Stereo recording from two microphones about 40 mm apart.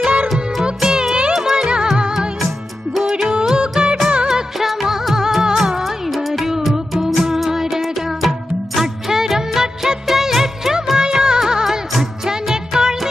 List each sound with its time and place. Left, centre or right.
0.7 s music: centre
3.0 s music: centre
3.3 s music: right
3.8 s music of bollywood: right
4.6 s music of bollywood: centre
6.5 s music: centre
8.7 s music of bollywood: centre
12.3 s music: centre